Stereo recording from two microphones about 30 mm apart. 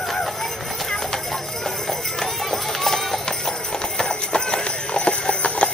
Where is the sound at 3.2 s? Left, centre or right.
Left.